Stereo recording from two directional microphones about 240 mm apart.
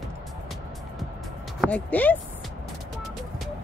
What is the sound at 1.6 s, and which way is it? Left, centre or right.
Speech, centre.